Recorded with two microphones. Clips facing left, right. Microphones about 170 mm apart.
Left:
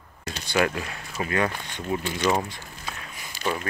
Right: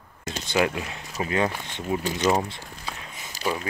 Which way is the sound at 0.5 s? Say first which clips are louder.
Even; 15° right (ahead or behind).